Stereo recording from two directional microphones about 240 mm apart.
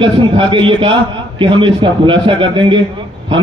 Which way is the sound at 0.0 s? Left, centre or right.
Right.